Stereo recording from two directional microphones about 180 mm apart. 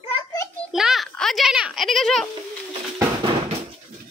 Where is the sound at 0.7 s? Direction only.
Centre (ahead or behind).